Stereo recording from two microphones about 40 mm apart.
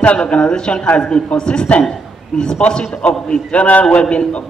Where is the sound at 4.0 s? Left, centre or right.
Left.